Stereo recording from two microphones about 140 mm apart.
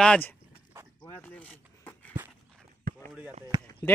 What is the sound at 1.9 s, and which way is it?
Walk, 10° left (ahead or behind).